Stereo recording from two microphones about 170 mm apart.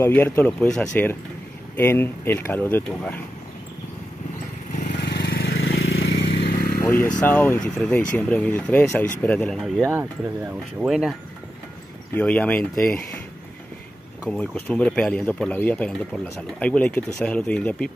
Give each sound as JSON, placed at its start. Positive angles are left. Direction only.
{"t": 0.0, "sound": "speech", "side_deg": 10}
{"t": 4.8, "sound": "vehicle", "side_deg": 85}
{"t": 6.8, "sound": "vehicle", "side_deg": 15}
{"t": 7.2, "sound": "speech", "side_deg": 10}
{"t": 9.8, "sound": "speech", "side_deg": -15}
{"t": 10.8, "sound": "speech", "side_deg": 0}
{"t": 12.1, "sound": "speech", "side_deg": 10}
{"t": 14.3, "sound": "speech", "side_deg": 5}